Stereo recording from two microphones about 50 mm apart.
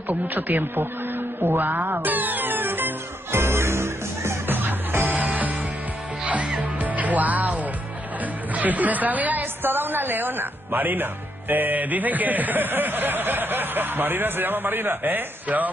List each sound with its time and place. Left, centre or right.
0.1 s a woman's voice: right
3.3 s music: right
4.5 s music: right
8.5 s a woman's voice: right